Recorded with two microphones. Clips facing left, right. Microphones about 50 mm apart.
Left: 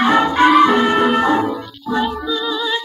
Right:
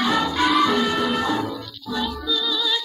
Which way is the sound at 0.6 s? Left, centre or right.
Left.